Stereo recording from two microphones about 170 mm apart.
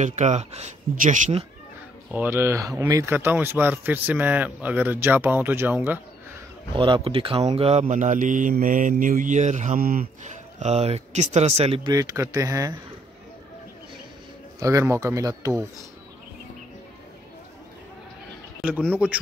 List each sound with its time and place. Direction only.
0.0 s speech: 45° right (ahead or behind)
2.0 s a man's voice: 10° right (ahead or behind)
6.7 s speech: 30° right (ahead or behind)
11.9 s speech: 20° right (ahead or behind)
14.6 s speech: 20° right (ahead or behind)
18.6 s a man's voice: 10° right (ahead or behind)